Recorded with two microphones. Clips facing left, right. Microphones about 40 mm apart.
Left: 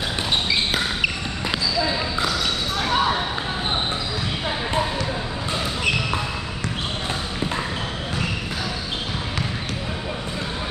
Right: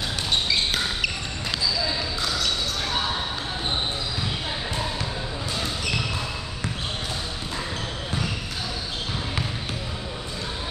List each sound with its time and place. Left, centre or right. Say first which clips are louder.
0.5 s basketball bounce: left 2 dB; centre
1.8 s basketball bounce: left 5 dB; left